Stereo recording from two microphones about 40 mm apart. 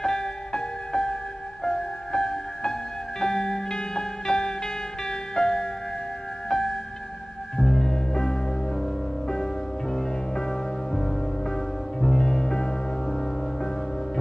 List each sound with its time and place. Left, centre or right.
0.0 s music: centre
3.2 s music: centre